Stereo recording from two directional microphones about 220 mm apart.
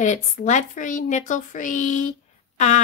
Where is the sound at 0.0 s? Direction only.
35° left (ahead or behind).